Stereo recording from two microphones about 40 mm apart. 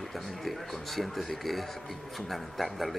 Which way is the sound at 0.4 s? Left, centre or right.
Centre.